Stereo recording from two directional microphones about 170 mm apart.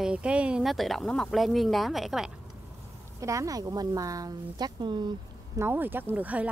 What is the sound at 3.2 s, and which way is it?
Speech, 20° right (ahead or behind).